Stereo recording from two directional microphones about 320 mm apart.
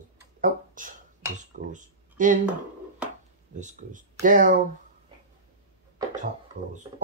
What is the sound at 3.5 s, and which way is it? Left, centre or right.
Speech, right.